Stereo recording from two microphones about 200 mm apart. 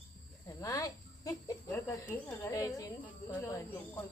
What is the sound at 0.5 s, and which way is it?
Cricket, 15° left (ahead or behind).